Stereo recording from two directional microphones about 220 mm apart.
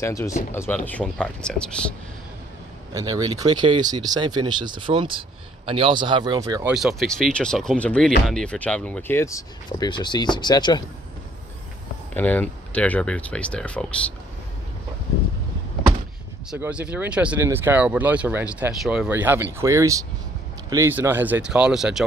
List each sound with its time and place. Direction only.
0.0 s speech: 10° left (ahead or behind)
2.9 s speech: 15° right (ahead or behind)
6.7 s speech: centre (ahead or behind); by 10.8 s 20° left (ahead or behind)
12.1 s speech: 5° left (ahead or behind)
16.4 s speech: 5° right (ahead or behind)